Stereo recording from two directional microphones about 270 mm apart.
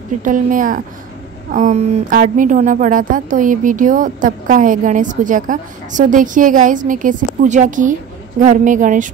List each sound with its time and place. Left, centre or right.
0.2 s speech: right